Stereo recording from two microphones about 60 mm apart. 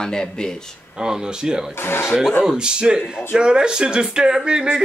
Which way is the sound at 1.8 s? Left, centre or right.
Left.